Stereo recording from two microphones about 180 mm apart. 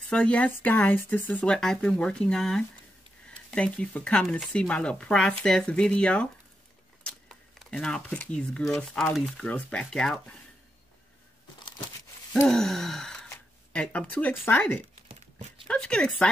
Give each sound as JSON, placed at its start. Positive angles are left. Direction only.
{"t": 0.0, "sound": "speech", "side_deg": 5}
{"t": 7.0, "sound": "camera", "side_deg": 5}
{"t": 8.8, "sound": "speech", "side_deg": 0}
{"t": 12.4, "sound": "speech", "side_deg": 0}